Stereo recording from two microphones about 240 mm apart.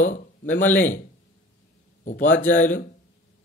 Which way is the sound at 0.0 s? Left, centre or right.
Left.